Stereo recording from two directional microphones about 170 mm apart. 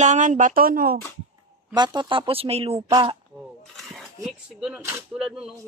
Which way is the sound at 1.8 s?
30° right (ahead or behind).